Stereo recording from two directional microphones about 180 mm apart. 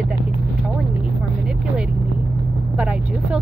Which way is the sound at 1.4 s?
5° right (ahead or behind).